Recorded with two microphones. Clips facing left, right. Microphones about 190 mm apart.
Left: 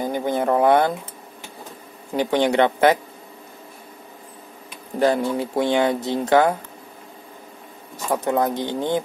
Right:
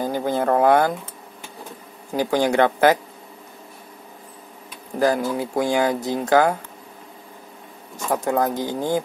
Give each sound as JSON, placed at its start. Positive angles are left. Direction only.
{"t": 0.0, "sound": "a sound", "side_deg": 20}
{"t": 2.1, "sound": "speech", "side_deg": 25}
{"t": 4.9, "sound": "speech", "side_deg": 25}
{"t": 8.1, "sound": "speech", "side_deg": 20}